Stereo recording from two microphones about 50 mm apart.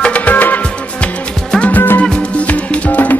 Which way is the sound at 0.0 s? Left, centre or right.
Left.